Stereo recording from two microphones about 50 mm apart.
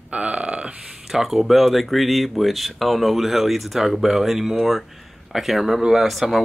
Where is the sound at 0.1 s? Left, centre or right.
Right.